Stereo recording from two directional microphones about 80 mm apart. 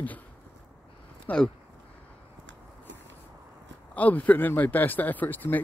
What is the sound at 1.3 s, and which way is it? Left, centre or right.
Speech, centre.